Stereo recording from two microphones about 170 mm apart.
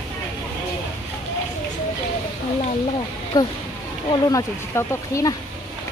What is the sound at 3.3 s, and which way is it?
Speech, 20° left (ahead or behind).